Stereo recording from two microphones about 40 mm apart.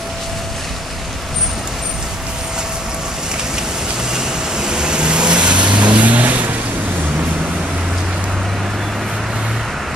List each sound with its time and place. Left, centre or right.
4.1 s vehicle: centre; by 6.5 s right